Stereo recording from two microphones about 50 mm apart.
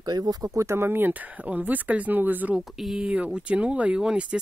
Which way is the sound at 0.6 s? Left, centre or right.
Right.